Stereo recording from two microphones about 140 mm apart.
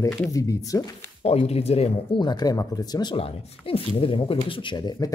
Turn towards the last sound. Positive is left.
turn(degrees=30)  # may be behind; listen again after turning